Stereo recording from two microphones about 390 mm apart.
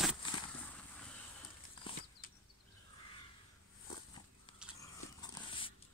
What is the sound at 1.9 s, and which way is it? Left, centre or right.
Bird flight, centre.